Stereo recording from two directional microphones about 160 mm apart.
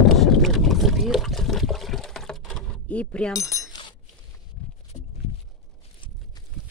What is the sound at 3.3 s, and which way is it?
Speech, 20° left (ahead or behind).